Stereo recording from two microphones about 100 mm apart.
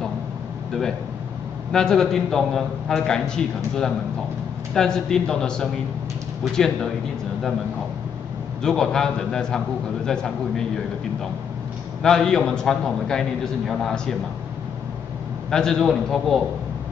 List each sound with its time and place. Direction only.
1.7 s a man's voice: 5° left (ahead or behind)
8.6 s a man's voice: 5° left (ahead or behind)
12.0 s a man's voice: 5° left (ahead or behind)
15.5 s a man's voice: 5° left (ahead or behind)